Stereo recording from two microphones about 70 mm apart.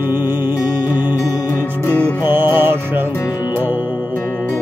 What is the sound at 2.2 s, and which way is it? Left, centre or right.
Music, right.